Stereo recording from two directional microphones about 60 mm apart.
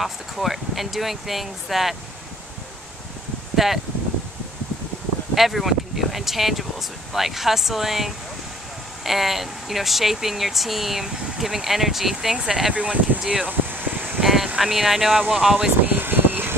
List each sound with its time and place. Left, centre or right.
0.0 s speech: centre
3.5 s speech: centre
5.3 s speech: centre
12.7 s speech: right
13.5 s vehicle: right
14.2 s vehicle: centre
14.6 s speech: centre
15.8 s a sound: right